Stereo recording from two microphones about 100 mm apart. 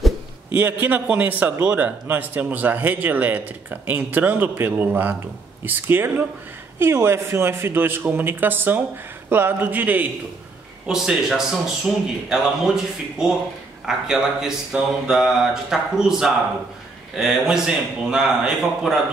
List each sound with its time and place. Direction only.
0.6 s a man's voice: 20° right (ahead or behind)
10.9 s a man's voice: 5° right (ahead or behind)